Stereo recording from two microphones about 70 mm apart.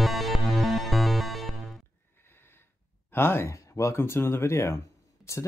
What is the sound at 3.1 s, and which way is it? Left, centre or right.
Speech, left.